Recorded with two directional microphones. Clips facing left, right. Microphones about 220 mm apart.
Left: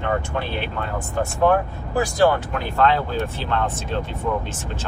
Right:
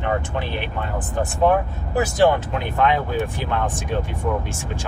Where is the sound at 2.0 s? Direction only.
20° right (ahead or behind).